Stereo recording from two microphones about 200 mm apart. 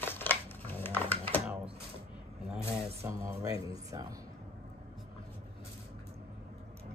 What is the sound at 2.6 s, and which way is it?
Mantra, 30° right (ahead or behind).